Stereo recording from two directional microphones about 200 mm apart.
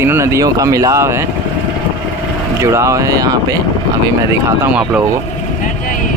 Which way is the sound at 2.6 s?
15° right (ahead or behind).